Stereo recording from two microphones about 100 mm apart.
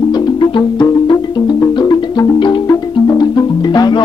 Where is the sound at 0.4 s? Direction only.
50° left (ahead or behind).